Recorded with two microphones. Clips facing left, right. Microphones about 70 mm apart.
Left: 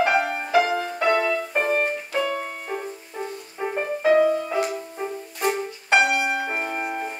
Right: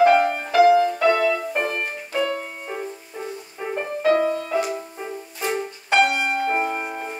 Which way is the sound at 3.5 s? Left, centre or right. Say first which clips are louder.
Left 1 dB; centre.